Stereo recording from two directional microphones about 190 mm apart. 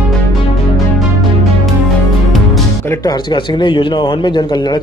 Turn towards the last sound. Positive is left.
turn(degrees=25)  # may be behind; listen again after turning